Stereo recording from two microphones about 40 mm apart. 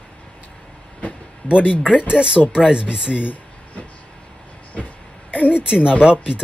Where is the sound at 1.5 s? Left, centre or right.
Left.